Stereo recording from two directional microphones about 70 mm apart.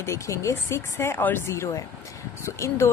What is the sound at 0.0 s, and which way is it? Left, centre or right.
Speech, left.